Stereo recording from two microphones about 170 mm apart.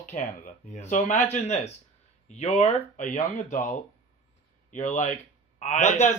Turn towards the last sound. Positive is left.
turn(degrees=45)  # may be behind; listen again after turning